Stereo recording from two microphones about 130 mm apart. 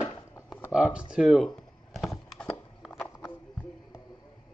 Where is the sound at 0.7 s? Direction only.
5° right (ahead or behind).